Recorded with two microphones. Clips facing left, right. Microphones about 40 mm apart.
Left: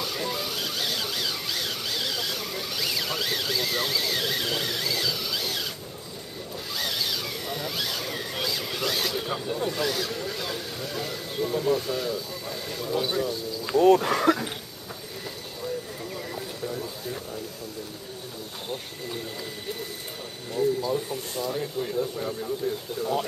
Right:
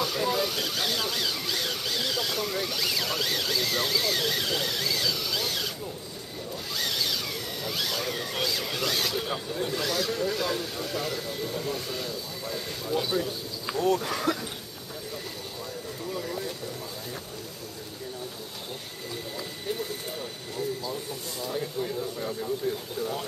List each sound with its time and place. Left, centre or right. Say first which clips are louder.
0.0 s a sound: right 3 dB; centre
6.8 s vehicle: even; centre
9.6 s speech: even; centre
13.8 s speech: left 7 dB; left
16.2 s a sound: even; centre
20.5 s speech: left 8 dB; centre
21.5 s speech: even; centre
22.9 s speech: left 4 dB; left